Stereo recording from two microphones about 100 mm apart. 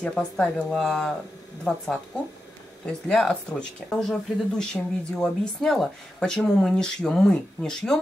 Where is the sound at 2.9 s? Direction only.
5° left (ahead or behind).